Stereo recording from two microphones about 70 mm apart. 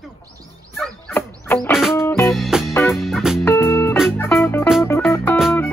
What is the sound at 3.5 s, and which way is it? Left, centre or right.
Music, left.